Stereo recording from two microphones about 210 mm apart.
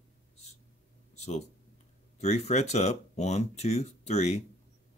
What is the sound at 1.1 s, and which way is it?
Speech, 30° left (ahead or behind).